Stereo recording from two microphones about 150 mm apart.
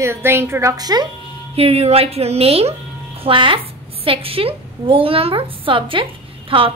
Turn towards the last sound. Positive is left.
turn(degrees=-35)  # may be behind; listen again after turning